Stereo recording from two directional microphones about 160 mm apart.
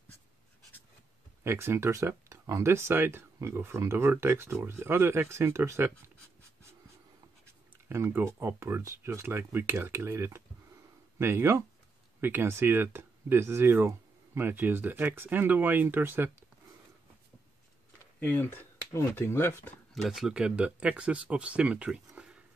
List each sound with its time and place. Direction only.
1.4 s speech: 15° right (ahead or behind)
7.4 s speech: 15° right (ahead or behind)
18.2 s speech: 10° left (ahead or behind)
19.9 s speech: centre (ahead or behind)